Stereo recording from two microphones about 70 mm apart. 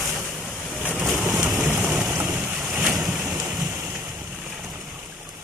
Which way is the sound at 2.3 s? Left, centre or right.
Right.